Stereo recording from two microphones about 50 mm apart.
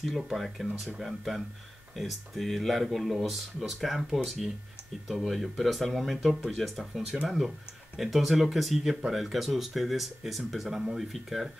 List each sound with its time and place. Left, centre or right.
0.4 s speech: centre